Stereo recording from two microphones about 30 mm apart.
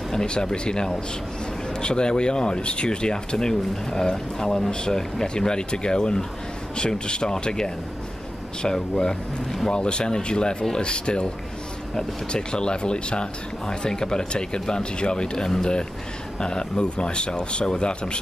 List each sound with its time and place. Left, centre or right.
0.3 s speech: left
9.7 s speech: left